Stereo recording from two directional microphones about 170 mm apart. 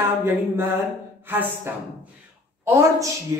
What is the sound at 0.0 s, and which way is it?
A woman's voice, 15° right (ahead or behind).